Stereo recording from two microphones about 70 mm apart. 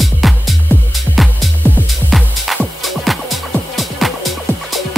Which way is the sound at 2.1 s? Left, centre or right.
Centre.